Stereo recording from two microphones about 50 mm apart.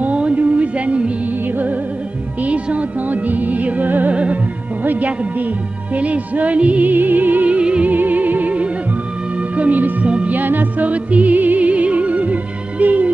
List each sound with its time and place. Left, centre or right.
0.0 s music: right
2.4 s music: right
4.1 s music: right
5.9 s music: right
7.4 s music: right
7.9 s music: right
10.0 s music: right
10.3 s music: right